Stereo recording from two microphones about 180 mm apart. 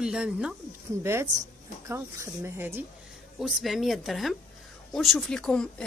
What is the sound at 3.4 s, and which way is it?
Speech, centre (ahead or behind).